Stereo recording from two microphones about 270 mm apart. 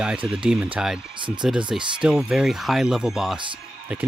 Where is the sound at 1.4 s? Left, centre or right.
Centre.